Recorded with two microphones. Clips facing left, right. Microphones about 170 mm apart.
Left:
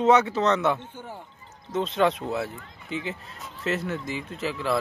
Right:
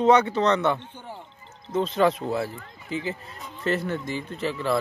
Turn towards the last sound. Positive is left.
turn(degrees=0)  # may be behind; listen again after turning